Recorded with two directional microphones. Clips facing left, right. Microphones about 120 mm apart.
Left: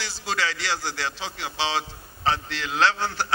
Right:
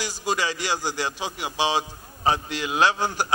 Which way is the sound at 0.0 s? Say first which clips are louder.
Right 2 dB; 15° right (ahead or behind).